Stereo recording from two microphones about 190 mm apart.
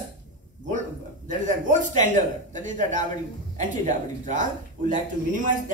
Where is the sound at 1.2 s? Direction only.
40° right (ahead or behind).